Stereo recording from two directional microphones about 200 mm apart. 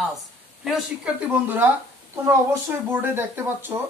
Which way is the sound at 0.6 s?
Centre (ahead or behind).